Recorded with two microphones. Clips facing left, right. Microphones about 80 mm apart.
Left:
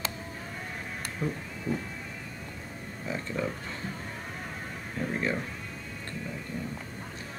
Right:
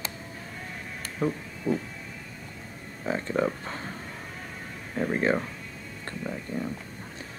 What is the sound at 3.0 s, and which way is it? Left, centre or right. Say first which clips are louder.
Speech: right 6 dB; right.